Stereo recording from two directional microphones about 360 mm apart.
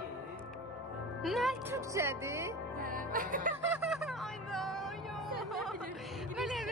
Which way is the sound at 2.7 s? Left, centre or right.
Right.